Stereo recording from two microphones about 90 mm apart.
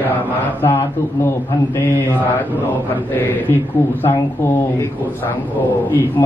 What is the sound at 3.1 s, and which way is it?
Mantra, 20° left (ahead or behind).